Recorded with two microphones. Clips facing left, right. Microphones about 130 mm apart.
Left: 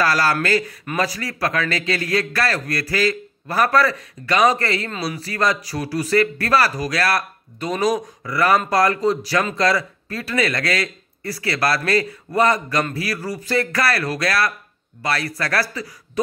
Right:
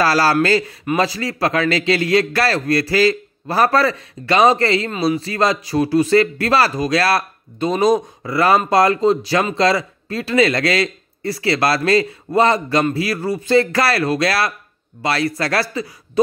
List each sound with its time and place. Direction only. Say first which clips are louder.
0.0 s speech: right 4 dB; 30° right (ahead or behind)